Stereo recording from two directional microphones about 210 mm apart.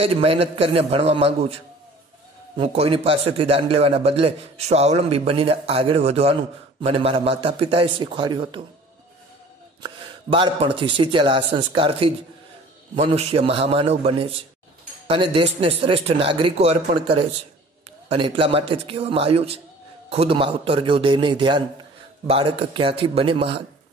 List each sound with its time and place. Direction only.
0.0 s a man's voice: 30° right (ahead or behind)
9.8 s a man's voice: 25° right (ahead or behind)